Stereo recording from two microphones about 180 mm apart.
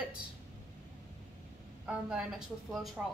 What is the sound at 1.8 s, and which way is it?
A woman's voice, 5° right (ahead or behind).